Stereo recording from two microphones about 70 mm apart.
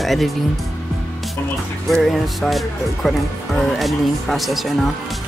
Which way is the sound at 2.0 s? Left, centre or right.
Centre.